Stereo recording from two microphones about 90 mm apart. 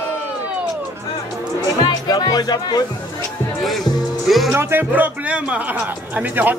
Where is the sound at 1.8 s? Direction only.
50° left (ahead or behind).